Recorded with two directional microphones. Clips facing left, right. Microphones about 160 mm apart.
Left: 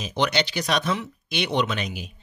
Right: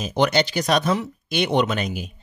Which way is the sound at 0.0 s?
45° right (ahead or behind).